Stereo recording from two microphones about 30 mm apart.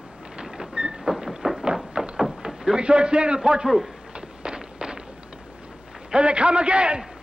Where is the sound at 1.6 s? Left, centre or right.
Right.